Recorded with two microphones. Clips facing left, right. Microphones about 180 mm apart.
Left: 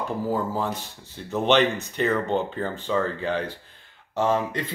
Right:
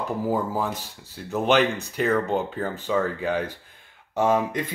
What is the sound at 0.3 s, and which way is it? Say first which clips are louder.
Speech: right 1 dB; 10° right (ahead or behind).